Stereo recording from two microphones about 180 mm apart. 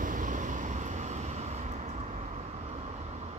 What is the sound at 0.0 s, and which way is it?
Vehicle, 50° right (ahead or behind).